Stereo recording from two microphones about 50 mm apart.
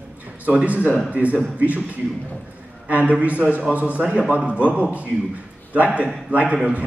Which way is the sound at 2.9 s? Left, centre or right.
Right.